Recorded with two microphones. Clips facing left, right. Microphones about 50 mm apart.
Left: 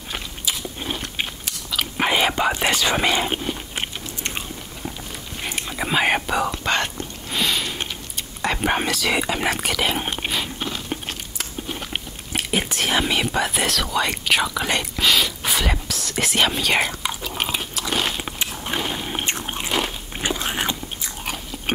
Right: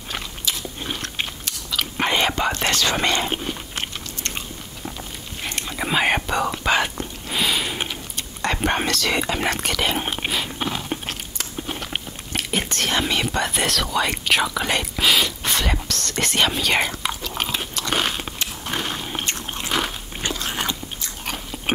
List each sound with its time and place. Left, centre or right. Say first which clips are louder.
0.1 s biting: even; centre
5.4 s whispering: even; centre
8.2 s a sound: even; centre
11.8 s whispering: even; centre
17.4 s biting: left 1 dB; centre
18.2 s biting: left 1 dB; centre
19.7 s biting: right 1 dB; centre
20.2 s biting: left 2 dB; centre